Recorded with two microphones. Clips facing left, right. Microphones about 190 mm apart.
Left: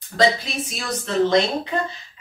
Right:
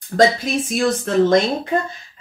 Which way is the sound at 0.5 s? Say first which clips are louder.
Right 9 dB; 50° right (ahead or behind).